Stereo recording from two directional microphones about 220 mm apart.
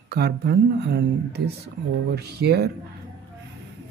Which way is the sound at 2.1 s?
45° right (ahead or behind).